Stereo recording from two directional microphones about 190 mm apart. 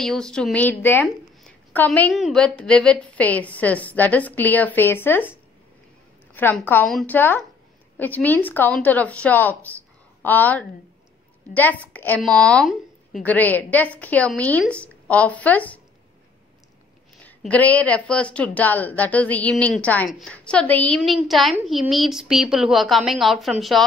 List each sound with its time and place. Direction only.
0.0 s a woman's voice: 5° left (ahead or behind)
6.3 s a woman's voice: 10° left (ahead or behind)
17.2 s a woman's voice: 10° left (ahead or behind)